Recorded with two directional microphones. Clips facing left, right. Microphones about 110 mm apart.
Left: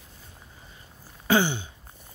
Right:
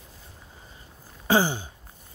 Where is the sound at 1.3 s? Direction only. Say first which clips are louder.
Right 1 dB; 35° right (ahead or behind).